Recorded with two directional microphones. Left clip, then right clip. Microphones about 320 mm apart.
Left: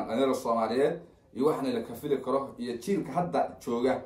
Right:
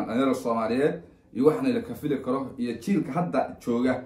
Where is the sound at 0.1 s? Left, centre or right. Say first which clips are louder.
Right 1 dB; centre.